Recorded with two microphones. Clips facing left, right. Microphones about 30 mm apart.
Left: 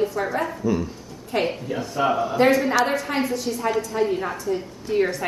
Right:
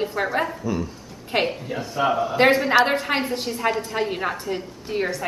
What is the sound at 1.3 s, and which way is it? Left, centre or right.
Speech, right.